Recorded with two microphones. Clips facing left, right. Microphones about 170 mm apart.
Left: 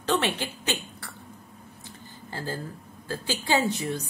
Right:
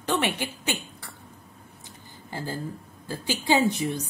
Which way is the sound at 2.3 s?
15° right (ahead or behind).